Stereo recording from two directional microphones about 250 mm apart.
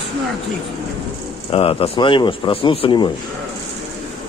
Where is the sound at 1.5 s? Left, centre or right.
Left.